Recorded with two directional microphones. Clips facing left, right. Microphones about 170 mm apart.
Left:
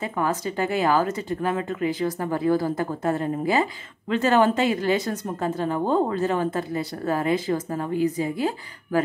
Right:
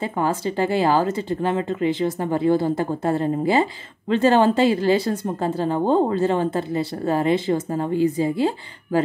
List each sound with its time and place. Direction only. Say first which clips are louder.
0.0 s a woman's voice: right 3 dB; 30° right (ahead or behind)